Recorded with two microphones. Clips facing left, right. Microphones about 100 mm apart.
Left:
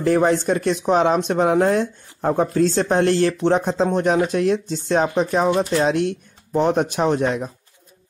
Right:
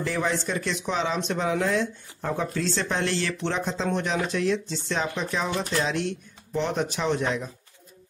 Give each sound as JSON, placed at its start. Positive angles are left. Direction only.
{"t": 0.0, "sound": "speech", "side_deg": 50}